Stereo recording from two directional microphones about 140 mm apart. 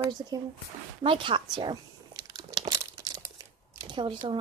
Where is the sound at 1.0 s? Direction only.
40° right (ahead or behind).